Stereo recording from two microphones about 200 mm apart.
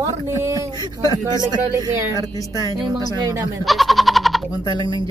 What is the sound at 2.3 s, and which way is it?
Speech, 15° left (ahead or behind).